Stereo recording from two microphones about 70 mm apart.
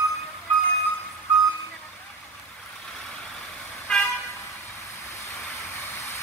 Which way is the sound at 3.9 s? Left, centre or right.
Centre.